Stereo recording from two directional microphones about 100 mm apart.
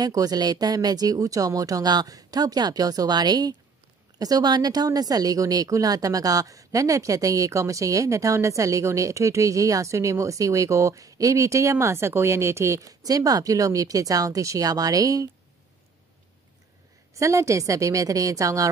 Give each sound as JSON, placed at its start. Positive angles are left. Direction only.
{"t": 0.0, "sound": "speech", "side_deg": -40}
{"t": 17.1, "sound": "speech", "side_deg": -30}